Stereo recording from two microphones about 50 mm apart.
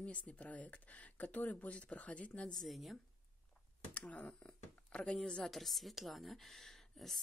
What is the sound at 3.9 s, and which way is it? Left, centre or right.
A woman's voice, left.